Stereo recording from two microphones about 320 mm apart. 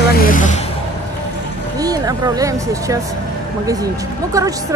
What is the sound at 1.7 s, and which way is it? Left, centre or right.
Speech, centre.